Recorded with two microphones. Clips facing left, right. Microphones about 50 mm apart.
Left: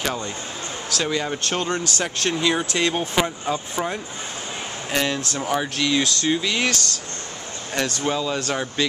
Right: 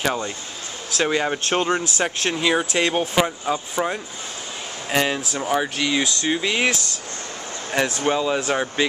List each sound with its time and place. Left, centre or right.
0.0 s speech: centre
0.9 s speech: right